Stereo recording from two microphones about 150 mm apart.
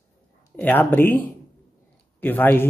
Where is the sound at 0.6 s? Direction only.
10° left (ahead or behind).